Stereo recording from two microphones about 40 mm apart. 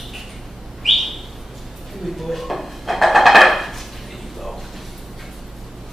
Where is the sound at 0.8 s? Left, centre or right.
Centre.